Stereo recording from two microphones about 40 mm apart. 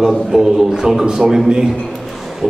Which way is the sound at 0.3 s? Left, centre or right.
Centre.